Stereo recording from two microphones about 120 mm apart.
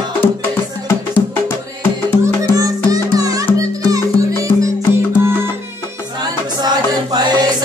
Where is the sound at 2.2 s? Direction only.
30° right (ahead or behind).